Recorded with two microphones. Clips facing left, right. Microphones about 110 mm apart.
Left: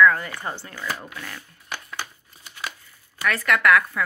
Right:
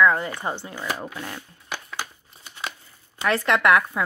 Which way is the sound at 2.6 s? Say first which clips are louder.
Right 1 dB; 25° right (ahead or behind).